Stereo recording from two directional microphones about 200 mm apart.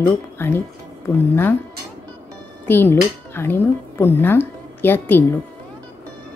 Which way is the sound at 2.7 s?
10° left (ahead or behind).